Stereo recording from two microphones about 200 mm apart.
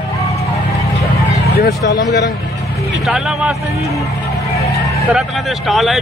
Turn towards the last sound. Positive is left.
turn(degrees=0)  # may be behind; listen again after turning